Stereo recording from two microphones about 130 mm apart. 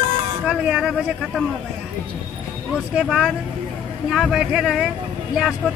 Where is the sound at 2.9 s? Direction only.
5° right (ahead or behind).